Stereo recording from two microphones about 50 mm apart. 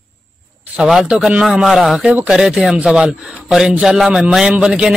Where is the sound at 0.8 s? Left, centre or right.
Centre.